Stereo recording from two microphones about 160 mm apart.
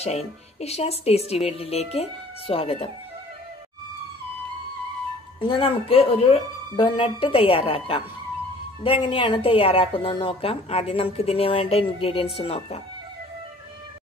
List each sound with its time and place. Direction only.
0.6 s a woman's voice: 40° left (ahead or behind)
5.4 s a woman's voice: 35° left (ahead or behind)